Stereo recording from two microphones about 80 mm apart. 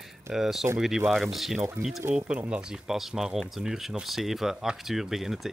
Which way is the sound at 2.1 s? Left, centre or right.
Centre.